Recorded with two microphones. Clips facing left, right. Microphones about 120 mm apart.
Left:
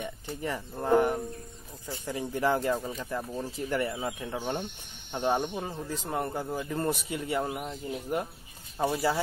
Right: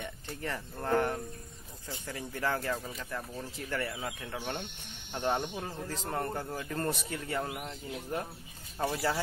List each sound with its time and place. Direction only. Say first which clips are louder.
0.0 s a man's voice: left 4 dB; 15° left (ahead or behind)